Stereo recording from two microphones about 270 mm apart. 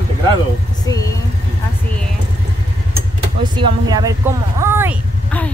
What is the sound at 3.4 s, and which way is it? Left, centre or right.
Speech, centre.